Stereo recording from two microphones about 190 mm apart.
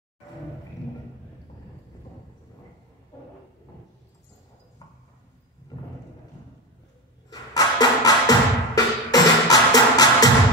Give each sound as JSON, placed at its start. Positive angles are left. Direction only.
{"t": 7.2, "sound": "music", "side_deg": 20}